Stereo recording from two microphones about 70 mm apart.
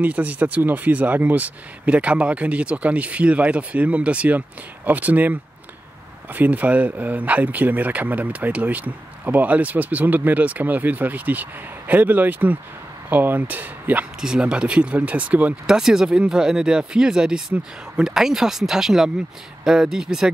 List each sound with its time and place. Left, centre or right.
0.0 s speech: right
14.2 s speech: centre
15.6 s speech: centre